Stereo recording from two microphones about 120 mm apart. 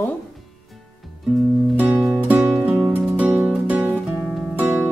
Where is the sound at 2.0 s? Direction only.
10° right (ahead or behind).